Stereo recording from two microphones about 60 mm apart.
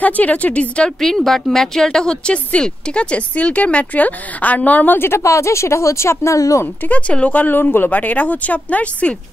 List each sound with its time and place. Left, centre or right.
0.0 s speech: left
1.0 s speech: centre; by 5.2 s left
5.2 s speech: left
6.9 s speech: left